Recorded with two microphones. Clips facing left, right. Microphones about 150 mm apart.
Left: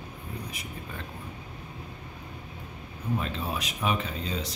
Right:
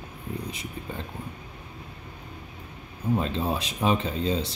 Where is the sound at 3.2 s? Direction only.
30° right (ahead or behind).